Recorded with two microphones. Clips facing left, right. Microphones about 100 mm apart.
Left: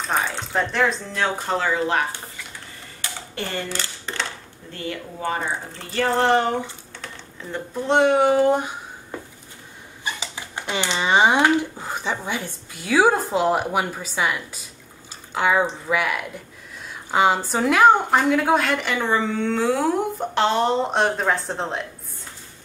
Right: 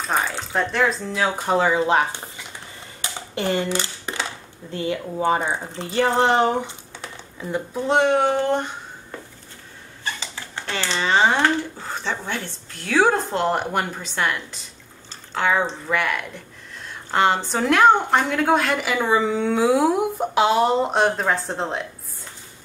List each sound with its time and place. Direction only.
0.0 s speech: centre (ahead or behind); by 2.4 s 20° right (ahead or behind)
3.0 s a sound: 20° right (ahead or behind)
4.7 s a woman's voice: 20° right (ahead or behind); by 21.8 s centre (ahead or behind)